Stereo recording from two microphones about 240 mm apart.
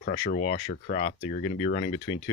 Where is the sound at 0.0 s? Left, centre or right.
Left.